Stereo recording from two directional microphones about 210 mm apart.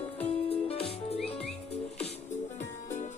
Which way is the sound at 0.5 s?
25° left (ahead or behind).